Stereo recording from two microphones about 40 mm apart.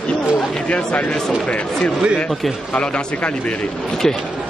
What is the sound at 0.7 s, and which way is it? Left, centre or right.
Speech, left.